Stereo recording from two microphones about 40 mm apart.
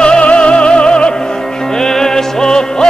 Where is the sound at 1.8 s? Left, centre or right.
Centre.